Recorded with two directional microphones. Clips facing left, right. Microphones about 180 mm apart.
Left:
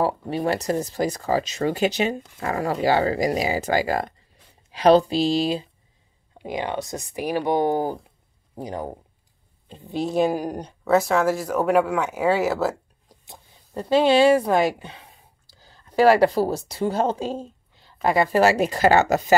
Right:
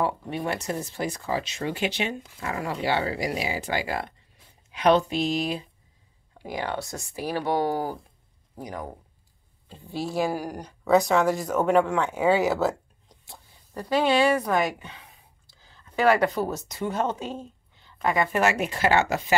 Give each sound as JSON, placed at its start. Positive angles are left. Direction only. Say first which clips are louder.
{"t": 0.0, "sound": "speech", "louder": "left 4 dB", "side_deg": 35}
{"t": 10.8, "sound": "speech", "louder": "left 1 dB", "side_deg": 0}
{"t": 13.2, "sound": "a woman's voice", "louder": "left 2 dB", "side_deg": 20}